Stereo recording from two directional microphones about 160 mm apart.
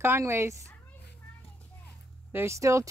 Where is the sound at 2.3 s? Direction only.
15° right (ahead or behind).